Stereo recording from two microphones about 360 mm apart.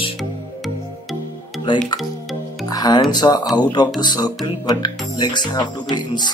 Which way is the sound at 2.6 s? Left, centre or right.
Centre.